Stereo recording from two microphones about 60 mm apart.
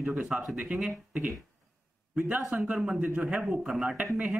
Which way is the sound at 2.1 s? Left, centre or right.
Right.